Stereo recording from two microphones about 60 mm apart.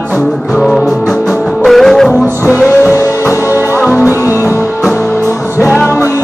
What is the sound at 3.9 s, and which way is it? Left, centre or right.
Music, right.